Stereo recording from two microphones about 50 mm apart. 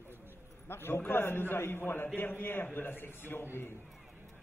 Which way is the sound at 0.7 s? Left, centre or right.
Left.